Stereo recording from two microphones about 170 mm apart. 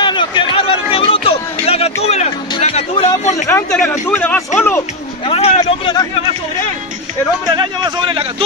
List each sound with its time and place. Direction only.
0.0 s a sound: 30° left (ahead or behind)
3.4 s speech: 10° left (ahead or behind)
5.2 s speech: 35° left (ahead or behind)
7.4 s a man's voice: 25° right (ahead or behind)